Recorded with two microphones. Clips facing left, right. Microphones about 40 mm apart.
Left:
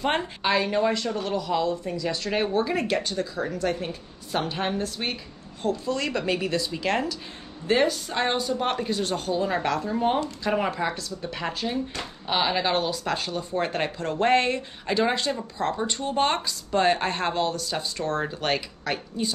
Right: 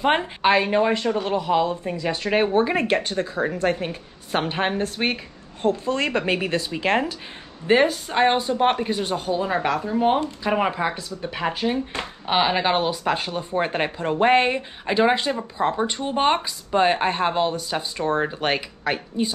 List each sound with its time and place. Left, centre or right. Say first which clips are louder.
0.0 s speech: right 6 dB; centre